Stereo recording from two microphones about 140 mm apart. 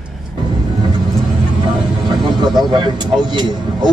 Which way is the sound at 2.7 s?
30° right (ahead or behind).